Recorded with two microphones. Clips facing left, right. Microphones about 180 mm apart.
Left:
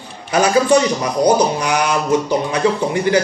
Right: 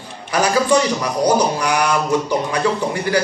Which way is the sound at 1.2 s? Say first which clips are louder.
Left 2 dB; 20° left (ahead or behind).